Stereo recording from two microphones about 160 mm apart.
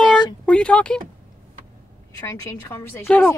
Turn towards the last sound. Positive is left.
turn(degrees=10)  # may be behind; listen again after turning